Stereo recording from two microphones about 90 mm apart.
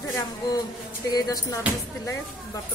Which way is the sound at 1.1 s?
45° left (ahead or behind).